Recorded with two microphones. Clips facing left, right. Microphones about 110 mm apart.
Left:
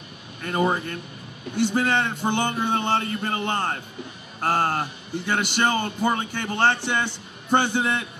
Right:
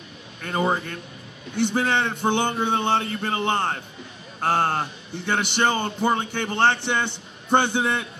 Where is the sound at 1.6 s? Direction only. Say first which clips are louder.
Even; 10° left (ahead or behind).